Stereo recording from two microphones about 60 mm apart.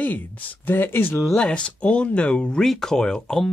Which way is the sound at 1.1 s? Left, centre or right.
Centre.